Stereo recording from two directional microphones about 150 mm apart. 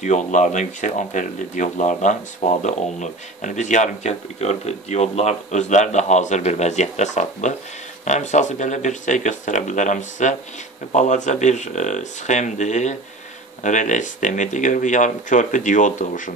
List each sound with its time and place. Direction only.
0.0 s speech: 55° left (ahead or behind)